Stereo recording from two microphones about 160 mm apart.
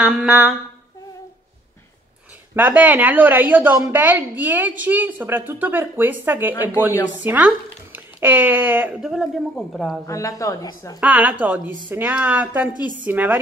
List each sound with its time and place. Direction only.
0.0 s a woman's voice: 5° right (ahead or behind)
2.5 s a woman's voice: 10° right (ahead or behind)
9.1 s a woman's voice: centre (ahead or behind)
10.0 s a woman's voice: 20° left (ahead or behind)
11.0 s a woman's voice: 10° right (ahead or behind)